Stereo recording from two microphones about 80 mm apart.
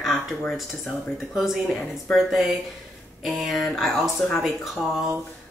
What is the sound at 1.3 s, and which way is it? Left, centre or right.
Speech, centre.